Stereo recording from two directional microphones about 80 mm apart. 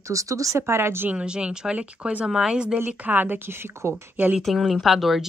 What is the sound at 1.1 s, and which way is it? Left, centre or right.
Speech, centre.